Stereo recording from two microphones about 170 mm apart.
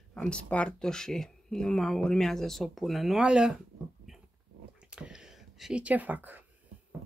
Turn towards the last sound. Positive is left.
turn(degrees=-10)  # may be behind; listen again after turning